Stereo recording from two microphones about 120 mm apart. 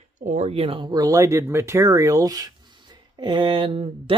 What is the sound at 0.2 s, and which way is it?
Speech, 80° right.